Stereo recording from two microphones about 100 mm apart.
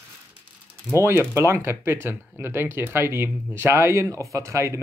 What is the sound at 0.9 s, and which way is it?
Speech, 25° right (ahead or behind).